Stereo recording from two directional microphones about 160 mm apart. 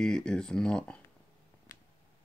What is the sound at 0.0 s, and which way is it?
Speech, 5° left (ahead or behind).